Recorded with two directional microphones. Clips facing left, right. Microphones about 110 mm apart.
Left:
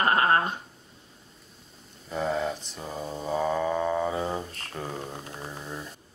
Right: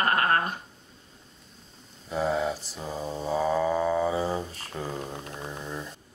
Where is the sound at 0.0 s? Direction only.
20° left (ahead or behind).